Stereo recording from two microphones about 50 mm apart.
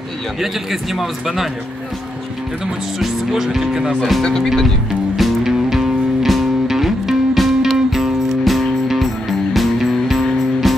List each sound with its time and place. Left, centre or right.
0.4 s a man's voice: centre
3.0 s speech: centre
4.4 s a man's voice: centre
5.1 s music: centre